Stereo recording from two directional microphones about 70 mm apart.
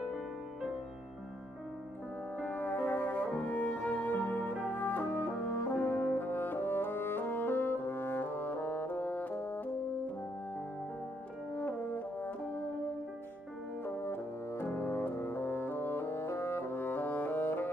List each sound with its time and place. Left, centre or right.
2.4 s music: left
5.5 s french horn: left
11.5 s french horn: left
13.8 s music: left